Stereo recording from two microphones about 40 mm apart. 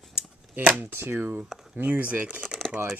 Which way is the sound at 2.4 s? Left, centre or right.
Centre.